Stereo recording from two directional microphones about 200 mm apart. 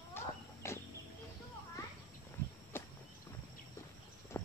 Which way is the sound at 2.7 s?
10° left (ahead or behind).